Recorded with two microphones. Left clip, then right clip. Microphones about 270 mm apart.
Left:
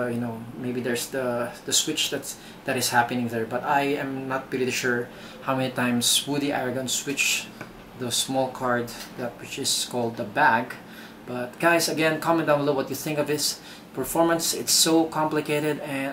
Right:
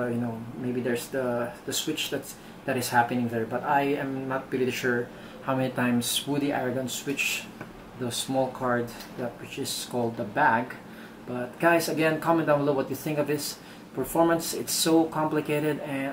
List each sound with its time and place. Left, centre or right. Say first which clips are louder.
0.8 s speech: left 2 dB; centre
8.3 s speech: right 2 dB; right
8.6 s speech: left 2 dB; centre
9.9 s speech: left 1 dB; right
10.3 s speech: left 3 dB; centre
14.3 s speech: left 4 dB; centre